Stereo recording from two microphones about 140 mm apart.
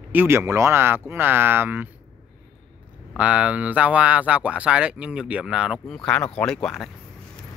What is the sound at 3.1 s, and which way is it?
Speech, 10° right (ahead or behind).